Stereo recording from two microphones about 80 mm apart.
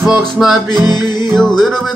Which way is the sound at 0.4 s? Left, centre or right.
Centre.